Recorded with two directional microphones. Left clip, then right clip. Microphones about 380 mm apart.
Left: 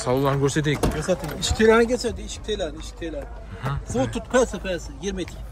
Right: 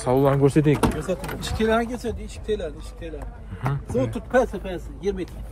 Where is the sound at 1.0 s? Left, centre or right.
Left.